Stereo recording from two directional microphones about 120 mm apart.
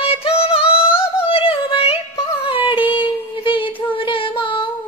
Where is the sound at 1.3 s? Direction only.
50° left (ahead or behind).